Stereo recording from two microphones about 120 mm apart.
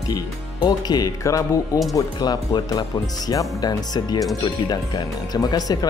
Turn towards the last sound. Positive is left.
turn(degrees=30)  # may be behind; listen again after turning